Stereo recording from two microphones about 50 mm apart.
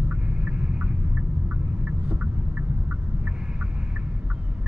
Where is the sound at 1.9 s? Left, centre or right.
Right.